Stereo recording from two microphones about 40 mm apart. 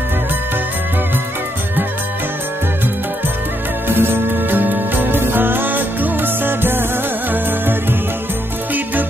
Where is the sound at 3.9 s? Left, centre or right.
Right.